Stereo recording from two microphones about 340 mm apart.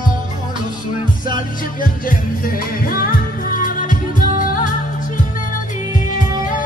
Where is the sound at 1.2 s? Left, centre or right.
Left.